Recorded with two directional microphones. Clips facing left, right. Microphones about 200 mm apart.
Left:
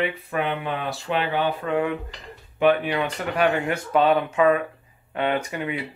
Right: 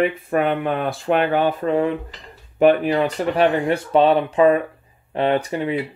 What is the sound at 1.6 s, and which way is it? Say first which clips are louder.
Speech: right 4 dB; 35° right (ahead or behind).